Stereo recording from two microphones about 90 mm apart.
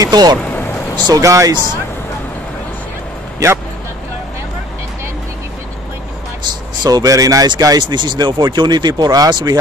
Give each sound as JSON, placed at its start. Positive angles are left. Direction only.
{"t": 0.0, "sound": "speech", "side_deg": -50}
{"t": 0.4, "sound": "vehicle", "side_deg": 20}
{"t": 1.0, "sound": "speech", "side_deg": -40}
{"t": 3.4, "sound": "speech", "side_deg": -40}
{"t": 6.8, "sound": "speech", "side_deg": -45}
{"t": 7.4, "sound": "speech", "side_deg": -50}